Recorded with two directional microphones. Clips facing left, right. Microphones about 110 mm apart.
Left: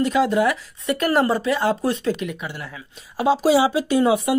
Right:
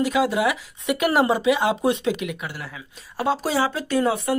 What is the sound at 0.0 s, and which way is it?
Speech, 5° right (ahead or behind).